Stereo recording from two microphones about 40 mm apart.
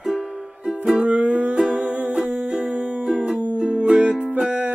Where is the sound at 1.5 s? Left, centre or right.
Right.